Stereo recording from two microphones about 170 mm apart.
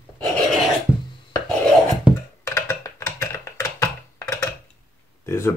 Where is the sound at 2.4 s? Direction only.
20° left (ahead or behind).